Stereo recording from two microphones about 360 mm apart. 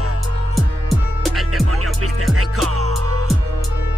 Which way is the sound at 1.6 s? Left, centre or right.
Right.